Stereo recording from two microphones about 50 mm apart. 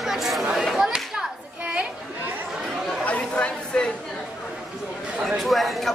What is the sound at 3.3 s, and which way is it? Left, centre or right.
Chatter, left.